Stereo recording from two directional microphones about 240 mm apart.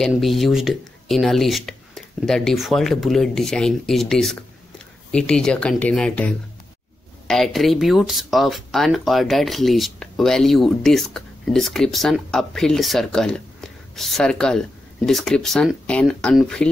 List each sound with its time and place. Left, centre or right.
0.0 s speech: centre